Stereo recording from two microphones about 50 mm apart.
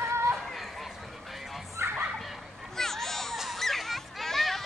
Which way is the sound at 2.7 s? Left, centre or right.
Centre.